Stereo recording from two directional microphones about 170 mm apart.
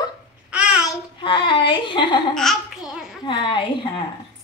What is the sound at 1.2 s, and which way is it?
Speech, 30° left (ahead or behind).